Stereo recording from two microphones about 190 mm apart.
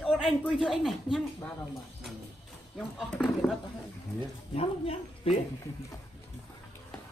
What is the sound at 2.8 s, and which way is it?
Speech, centre (ahead or behind).